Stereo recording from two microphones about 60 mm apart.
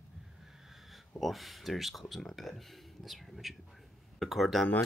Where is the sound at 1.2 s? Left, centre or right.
Centre.